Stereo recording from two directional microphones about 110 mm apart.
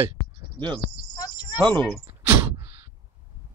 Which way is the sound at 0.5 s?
45° right (ahead or behind).